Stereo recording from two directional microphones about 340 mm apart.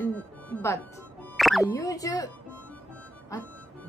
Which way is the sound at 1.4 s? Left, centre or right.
Centre.